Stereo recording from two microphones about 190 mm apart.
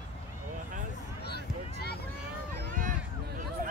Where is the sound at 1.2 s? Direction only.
60° left (ahead or behind).